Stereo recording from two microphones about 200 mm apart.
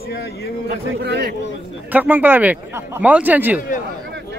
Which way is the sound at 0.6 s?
55° right (ahead or behind).